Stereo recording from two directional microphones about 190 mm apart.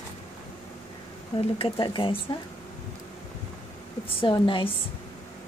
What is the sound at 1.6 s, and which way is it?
Speech, 25° left (ahead or behind).